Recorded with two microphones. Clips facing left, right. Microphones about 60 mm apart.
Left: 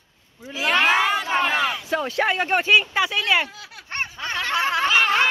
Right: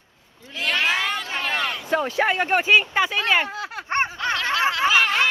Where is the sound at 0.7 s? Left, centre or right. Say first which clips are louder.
Left 5 dB; left.